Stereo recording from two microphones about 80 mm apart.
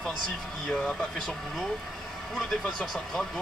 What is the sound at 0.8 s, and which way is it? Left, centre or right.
Speech, centre.